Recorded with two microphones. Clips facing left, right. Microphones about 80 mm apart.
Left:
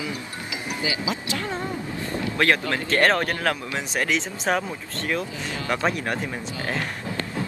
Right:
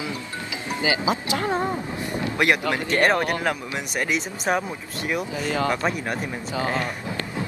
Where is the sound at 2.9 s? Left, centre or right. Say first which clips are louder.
Even; centre.